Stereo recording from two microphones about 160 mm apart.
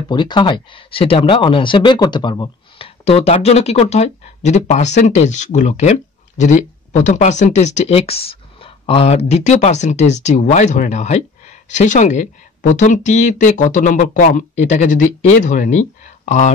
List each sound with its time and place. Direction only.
0.1 s speech: 30° left (ahead or behind); by 16.5 s 50° left (ahead or behind)